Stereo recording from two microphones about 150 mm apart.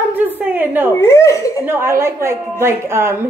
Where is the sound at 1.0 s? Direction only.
20° left (ahead or behind).